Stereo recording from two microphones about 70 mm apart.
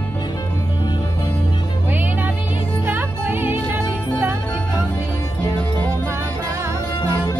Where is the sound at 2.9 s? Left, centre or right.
Right.